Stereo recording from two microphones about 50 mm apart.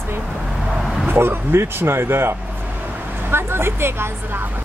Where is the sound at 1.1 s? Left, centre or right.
Right.